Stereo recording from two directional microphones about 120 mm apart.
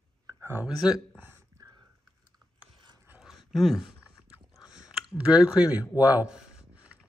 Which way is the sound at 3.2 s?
Centre (ahead or behind).